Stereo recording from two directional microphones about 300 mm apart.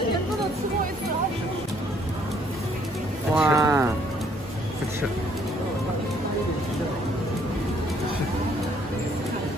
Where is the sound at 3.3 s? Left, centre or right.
Centre.